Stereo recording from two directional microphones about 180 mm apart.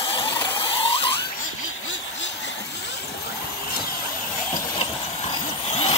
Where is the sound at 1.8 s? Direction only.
90° left.